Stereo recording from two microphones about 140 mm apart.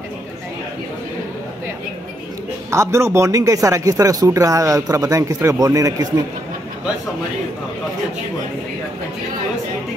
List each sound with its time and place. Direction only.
2.7 s speech: 20° right (ahead or behind)